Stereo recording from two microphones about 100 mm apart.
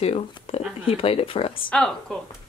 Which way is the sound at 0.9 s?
70° left (ahead or behind).